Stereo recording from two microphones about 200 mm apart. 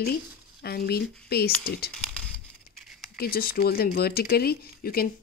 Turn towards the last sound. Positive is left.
turn(degrees=50)  # may be behind; listen again after turning